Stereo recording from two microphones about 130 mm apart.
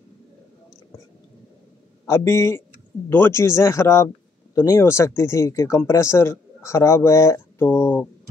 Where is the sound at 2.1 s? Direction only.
20° left (ahead or behind).